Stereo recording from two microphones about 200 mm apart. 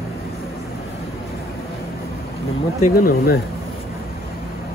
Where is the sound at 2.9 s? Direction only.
50° left (ahead or behind).